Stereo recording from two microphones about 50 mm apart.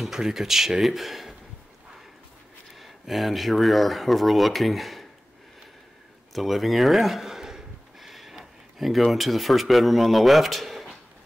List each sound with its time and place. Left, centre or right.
0.0 s speech: centre
2.8 s speech: centre
6.3 s speech: centre